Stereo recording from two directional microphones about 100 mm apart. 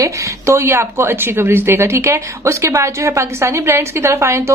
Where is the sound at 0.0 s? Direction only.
30° right (ahead or behind).